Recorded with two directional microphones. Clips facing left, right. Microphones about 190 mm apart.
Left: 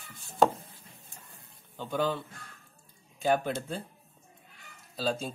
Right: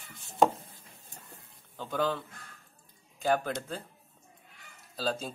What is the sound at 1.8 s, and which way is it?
Speech, 10° left (ahead or behind).